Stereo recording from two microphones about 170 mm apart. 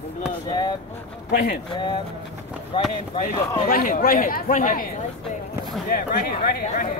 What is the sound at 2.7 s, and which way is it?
Speech, 30° left (ahead or behind).